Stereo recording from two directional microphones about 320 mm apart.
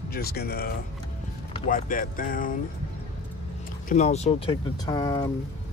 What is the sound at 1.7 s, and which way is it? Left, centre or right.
Speech, left.